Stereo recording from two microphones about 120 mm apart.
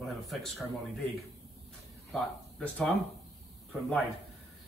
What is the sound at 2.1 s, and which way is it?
A man's voice, 5° left (ahead or behind).